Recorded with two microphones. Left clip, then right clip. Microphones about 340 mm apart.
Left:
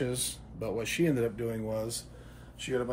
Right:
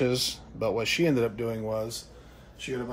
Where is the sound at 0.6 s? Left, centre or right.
Centre.